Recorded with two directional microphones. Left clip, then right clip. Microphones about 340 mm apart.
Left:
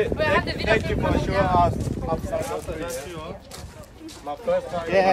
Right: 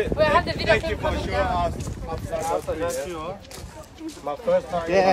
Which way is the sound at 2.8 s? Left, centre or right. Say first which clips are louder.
Right 4 dB; centre.